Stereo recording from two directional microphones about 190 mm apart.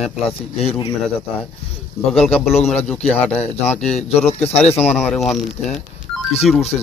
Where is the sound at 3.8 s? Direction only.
35° left (ahead or behind).